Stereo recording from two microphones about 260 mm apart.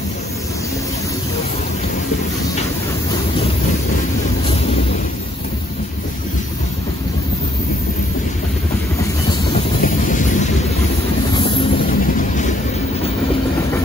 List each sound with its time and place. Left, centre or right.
9.8 s wind noise: left
11.3 s vehicle: left